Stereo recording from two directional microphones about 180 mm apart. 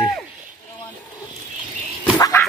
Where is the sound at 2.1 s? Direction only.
15° left (ahead or behind).